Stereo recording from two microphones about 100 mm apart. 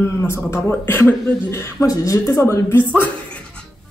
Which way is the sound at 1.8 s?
35° left (ahead or behind).